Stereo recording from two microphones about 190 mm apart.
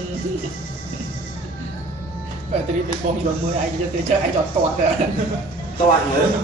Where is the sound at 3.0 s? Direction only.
40° right (ahead or behind).